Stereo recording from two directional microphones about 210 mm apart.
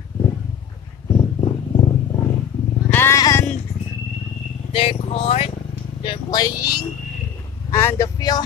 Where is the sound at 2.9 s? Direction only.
10° left (ahead or behind).